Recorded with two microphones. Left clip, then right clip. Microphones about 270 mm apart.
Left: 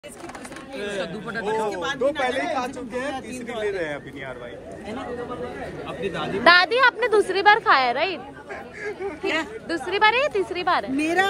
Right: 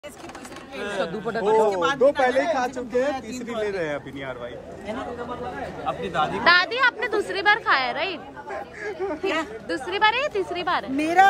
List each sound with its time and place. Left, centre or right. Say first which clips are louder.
0.9 s a woman's voice: right 5 dB; centre
1.7 s speech: right 5 dB; right
3.1 s speech: right 3 dB; centre
3.6 s speech: even; right
5.9 s speech: right 5 dB; centre
8.5 s chatter: right 1 dB; centre
9.2 s a woman's voice: left 4 dB; centre